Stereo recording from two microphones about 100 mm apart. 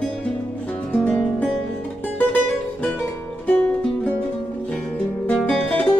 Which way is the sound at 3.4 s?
10° left (ahead or behind).